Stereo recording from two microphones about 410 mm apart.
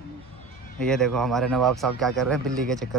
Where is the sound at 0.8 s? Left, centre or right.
Centre.